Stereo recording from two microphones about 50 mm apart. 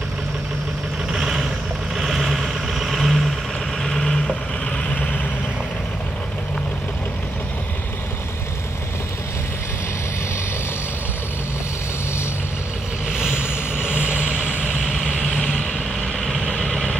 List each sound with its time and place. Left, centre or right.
1.1 s vehicle: centre
3.8 s vehicle: centre
13.8 s vehicle: right
16.2 s vehicle: centre